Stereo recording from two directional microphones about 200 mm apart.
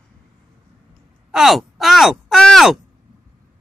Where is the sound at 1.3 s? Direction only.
Centre (ahead or behind).